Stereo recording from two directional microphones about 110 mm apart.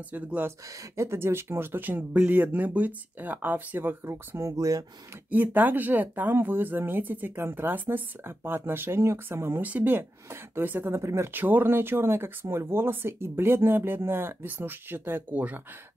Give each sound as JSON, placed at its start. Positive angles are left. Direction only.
{"t": 0.1, "sound": "speech", "side_deg": -15}
{"t": 5.3, "sound": "speech", "side_deg": -15}